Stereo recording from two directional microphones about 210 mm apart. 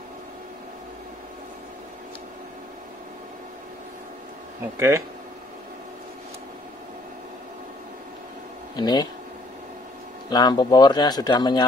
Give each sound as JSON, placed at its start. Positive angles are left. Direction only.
{"t": 4.7, "sound": "speech", "side_deg": -15}
{"t": 8.7, "sound": "speech", "side_deg": 20}
{"t": 10.3, "sound": "speech", "side_deg": 20}